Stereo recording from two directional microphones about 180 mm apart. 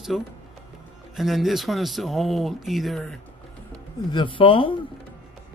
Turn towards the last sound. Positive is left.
turn(degrees=30)  # may be behind; listen again after turning